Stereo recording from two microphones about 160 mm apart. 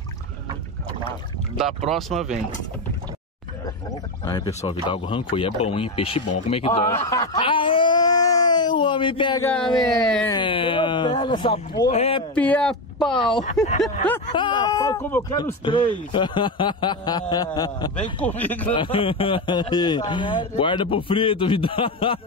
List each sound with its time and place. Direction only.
1.9 s speech: centre (ahead or behind)
4.2 s a man's voice: 25° left (ahead or behind)
7.3 s a sound: 35° left (ahead or behind)
9.4 s speech: 10° left (ahead or behind)
10.3 s a man's voice: 30° left (ahead or behind)
12.4 s speech: 10° left (ahead or behind)
14.3 s speech: 30° left (ahead or behind); by 15.2 s 15° left (ahead or behind)
15.6 s a man's voice: 30° left (ahead or behind)
17.9 s speech: 10° left (ahead or behind)
18.8 s a man's voice: 35° left (ahead or behind)